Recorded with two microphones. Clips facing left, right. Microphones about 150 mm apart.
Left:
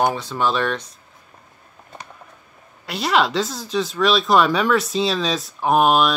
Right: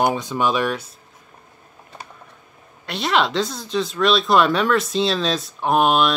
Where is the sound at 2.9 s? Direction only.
Centre (ahead or behind).